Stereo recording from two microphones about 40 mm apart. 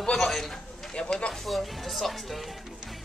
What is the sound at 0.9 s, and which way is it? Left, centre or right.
Speech, centre.